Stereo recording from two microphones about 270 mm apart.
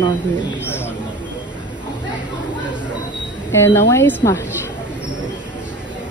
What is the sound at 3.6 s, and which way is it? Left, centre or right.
Speech, centre.